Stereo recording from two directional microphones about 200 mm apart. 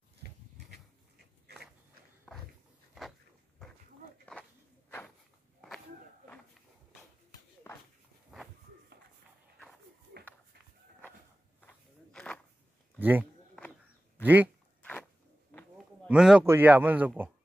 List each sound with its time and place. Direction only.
0.2 s pig: 55° right (ahead or behind)
2.3 s a sound: centre (ahead or behind)
4.3 s walk: 10° left (ahead or behind)
7.7 s a sound: 10° left (ahead or behind)
8.3 s walk: centre (ahead or behind)
11.6 s walk: 5° left (ahead or behind)
13.0 s speech: 10° right (ahead or behind)
14.8 s a sound: 5° left (ahead or behind)
16.1 s speech: 5° right (ahead or behind)